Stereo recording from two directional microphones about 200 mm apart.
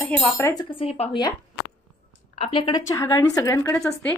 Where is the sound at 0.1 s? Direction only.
10° left (ahead or behind).